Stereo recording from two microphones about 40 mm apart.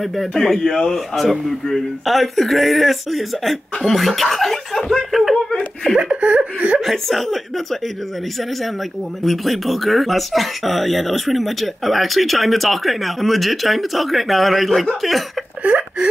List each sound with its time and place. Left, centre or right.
0.0 s speech: centre
1.1 s speech: centre
3.8 s chuckle: centre
5.9 s laughter: right
6.8 s speech: centre
9.2 s speech: centre
15.6 s whimper: right